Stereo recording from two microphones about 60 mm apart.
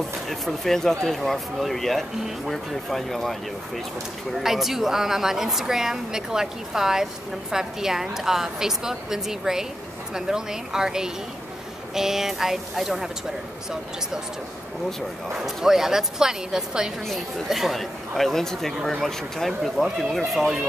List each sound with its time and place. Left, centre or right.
0.3 s a woman's voice: centre
15.3 s a woman's voice: centre